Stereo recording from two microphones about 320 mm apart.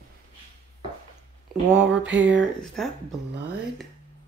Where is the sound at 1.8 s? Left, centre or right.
Centre.